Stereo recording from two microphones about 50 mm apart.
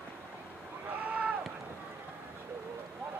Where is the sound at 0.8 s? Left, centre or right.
Right.